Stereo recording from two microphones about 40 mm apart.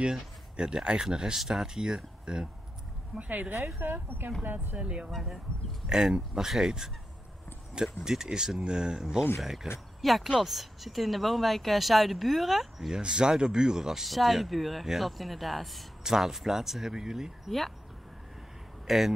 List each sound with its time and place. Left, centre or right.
0.0 s a sound: right
1.1 s speech: centre
3.3 s speech: right
3.5 s speech: right
4.7 s speech: right
5.9 s speech: centre
7.7 s speech: centre
12.9 s speech: right
14.0 s speech: centre
16.0 s speech: centre
17.5 s speech: centre
18.9 s speech: centre